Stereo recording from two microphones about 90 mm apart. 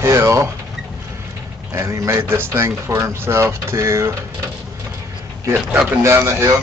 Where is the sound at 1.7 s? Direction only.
35° right (ahead or behind).